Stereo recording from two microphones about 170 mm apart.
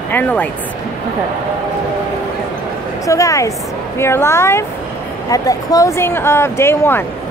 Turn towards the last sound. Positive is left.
turn(degrees=15)  # may be behind; listen again after turning